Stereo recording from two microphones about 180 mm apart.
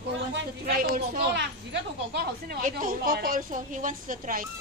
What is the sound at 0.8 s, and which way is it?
Speech, 70° right (ahead or behind).